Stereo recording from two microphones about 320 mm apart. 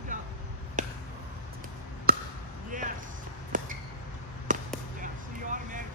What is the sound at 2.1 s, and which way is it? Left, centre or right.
Basketball bounce, right.